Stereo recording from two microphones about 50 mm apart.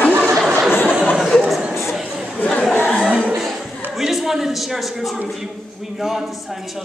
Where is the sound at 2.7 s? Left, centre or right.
Left.